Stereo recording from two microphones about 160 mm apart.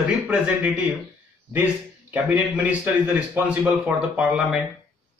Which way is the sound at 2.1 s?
10° right (ahead or behind).